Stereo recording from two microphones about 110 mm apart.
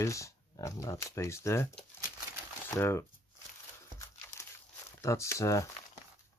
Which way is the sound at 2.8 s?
25° left (ahead or behind).